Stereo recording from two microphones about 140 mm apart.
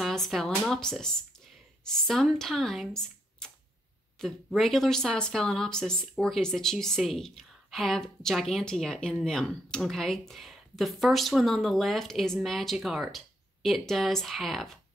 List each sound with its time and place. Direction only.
0.0 s speech: centre (ahead or behind)